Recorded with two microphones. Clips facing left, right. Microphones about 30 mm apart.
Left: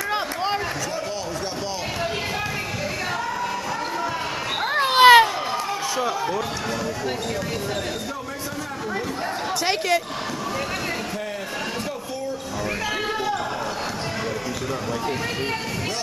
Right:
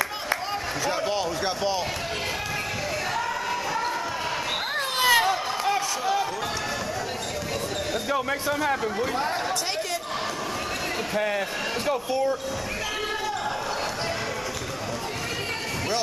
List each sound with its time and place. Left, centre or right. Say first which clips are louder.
4.7 s children playing: left 10 dB; left